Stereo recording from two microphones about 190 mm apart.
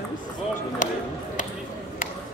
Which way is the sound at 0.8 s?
45° left (ahead or behind).